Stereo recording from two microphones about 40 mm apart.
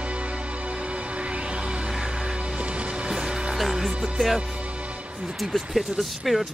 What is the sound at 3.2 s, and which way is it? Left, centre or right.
Music, centre.